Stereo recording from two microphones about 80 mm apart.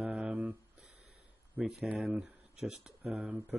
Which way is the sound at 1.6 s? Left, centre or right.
Centre.